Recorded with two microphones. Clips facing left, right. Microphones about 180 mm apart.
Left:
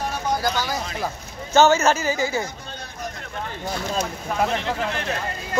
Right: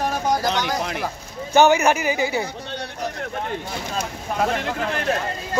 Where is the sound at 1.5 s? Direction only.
15° right (ahead or behind).